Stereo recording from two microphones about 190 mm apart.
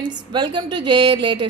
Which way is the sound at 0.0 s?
25° right (ahead or behind).